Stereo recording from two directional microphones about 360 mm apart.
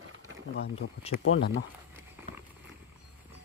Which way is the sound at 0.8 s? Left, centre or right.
Left.